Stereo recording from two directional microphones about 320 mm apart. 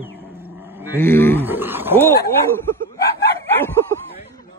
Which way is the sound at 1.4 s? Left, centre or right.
Centre.